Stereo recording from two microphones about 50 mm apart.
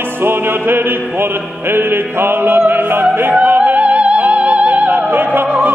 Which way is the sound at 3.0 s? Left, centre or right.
Right.